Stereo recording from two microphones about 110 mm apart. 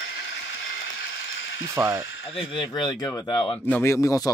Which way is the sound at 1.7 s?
30° right (ahead or behind).